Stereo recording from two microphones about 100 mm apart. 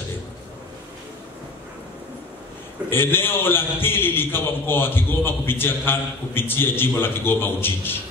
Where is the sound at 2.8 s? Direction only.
25° left (ahead or behind).